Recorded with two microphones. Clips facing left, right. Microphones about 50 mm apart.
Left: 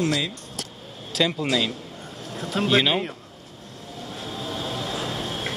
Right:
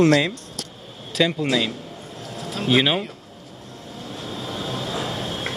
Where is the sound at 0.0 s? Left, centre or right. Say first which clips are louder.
Right 8 dB; right.